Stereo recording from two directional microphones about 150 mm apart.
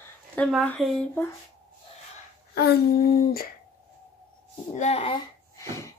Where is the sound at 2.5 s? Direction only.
85° left.